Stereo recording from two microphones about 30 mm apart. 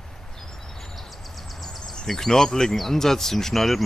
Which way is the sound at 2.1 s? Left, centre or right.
Centre.